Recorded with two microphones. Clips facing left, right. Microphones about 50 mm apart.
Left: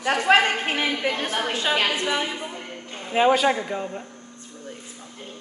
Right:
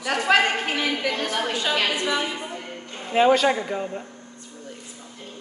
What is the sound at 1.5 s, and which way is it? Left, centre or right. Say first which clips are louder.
Speech: left 3 dB; left.